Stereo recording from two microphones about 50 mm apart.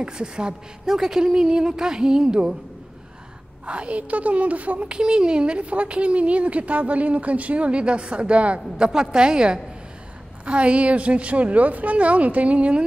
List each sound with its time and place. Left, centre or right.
0.0 s a woman's voice: centre
3.6 s a woman's voice: right